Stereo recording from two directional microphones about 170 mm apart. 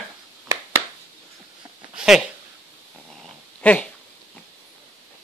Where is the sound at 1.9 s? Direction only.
5° right (ahead or behind).